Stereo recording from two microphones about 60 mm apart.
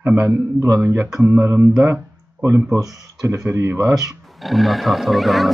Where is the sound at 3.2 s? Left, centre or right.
Right.